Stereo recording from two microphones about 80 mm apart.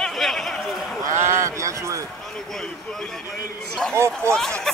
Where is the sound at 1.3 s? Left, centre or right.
Right.